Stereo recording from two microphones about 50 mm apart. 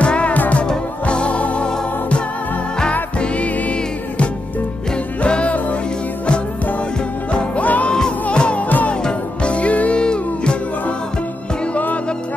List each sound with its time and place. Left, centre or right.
0.0 s music: left
2.9 s music: left
5.2 s music: left
7.3 s music: left
7.9 s music: centre
8.6 s music: left
9.0 s music: left